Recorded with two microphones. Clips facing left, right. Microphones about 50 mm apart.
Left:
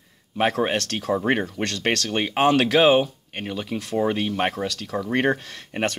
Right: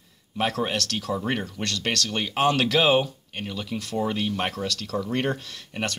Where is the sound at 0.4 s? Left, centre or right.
Left.